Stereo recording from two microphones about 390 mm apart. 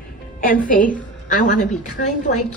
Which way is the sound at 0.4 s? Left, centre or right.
Left.